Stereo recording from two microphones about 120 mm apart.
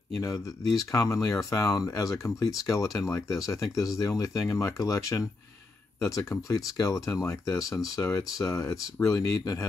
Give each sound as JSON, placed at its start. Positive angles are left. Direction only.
{"t": 0.2, "sound": "speech", "side_deg": 30}